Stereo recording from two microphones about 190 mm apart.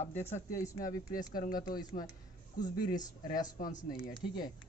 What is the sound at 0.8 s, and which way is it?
Speech, 45° left (ahead or behind).